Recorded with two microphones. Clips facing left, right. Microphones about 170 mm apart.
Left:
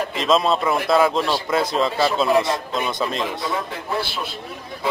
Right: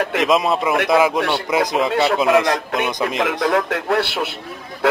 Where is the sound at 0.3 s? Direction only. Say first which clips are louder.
Left 2 dB; 15° right (ahead or behind).